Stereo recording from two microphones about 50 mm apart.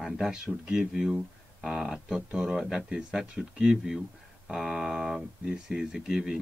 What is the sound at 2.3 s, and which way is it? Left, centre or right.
Speech, centre.